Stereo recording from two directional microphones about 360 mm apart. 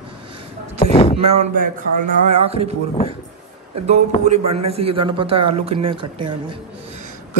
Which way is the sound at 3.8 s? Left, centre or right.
Centre.